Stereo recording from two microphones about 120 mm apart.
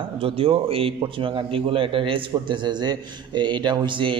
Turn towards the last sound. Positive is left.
turn(degrees=-40)  # may be behind; listen again after turning